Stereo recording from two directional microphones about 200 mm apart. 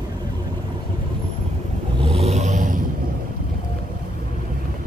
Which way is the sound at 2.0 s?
30° right (ahead or behind).